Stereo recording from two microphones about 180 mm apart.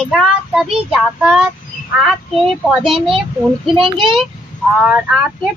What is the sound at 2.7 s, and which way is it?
Speech, centre (ahead or behind).